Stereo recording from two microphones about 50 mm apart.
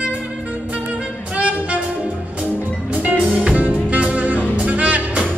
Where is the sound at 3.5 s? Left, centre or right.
Right.